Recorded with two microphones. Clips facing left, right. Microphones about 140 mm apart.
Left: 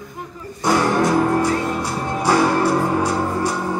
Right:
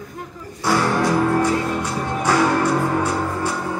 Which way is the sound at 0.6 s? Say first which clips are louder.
Left 2 dB; 20° left (ahead or behind).